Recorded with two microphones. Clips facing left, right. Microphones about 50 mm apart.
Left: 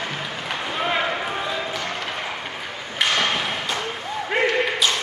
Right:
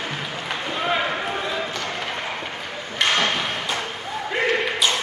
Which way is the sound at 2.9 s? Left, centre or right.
Centre.